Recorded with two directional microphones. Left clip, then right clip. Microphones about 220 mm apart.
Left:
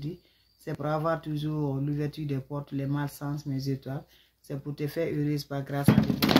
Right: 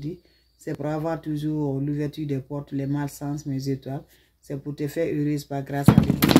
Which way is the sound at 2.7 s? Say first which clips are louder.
Right 5 dB; 5° left (ahead or behind).